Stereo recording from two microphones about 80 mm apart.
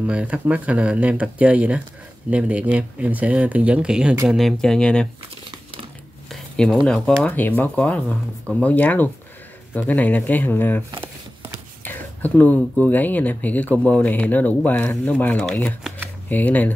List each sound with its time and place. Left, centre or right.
0.0 s speech: centre
4.4 s speech: centre
6.2 s a sound: centre
6.9 s speech: centre
7.3 s speech: left
11.8 s speech: left